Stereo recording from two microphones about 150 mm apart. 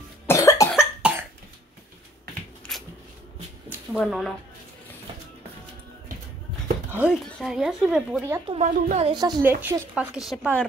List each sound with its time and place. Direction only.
0.3 s cough: 20° left (ahead or behind)
0.7 s cough: 5° right (ahead or behind)
2.7 s a sound: centre (ahead or behind)
4.0 s speech: centre (ahead or behind)
6.9 s speech: 5° right (ahead or behind)
7.2 s speech: 5° left (ahead or behind)
8.5 s a woman's voice: 50° right (ahead or behind)
9.0 s a woman's voice: 30° right (ahead or behind)
9.6 s speech: 15° right (ahead or behind)
10.1 s speech: 5° right (ahead or behind)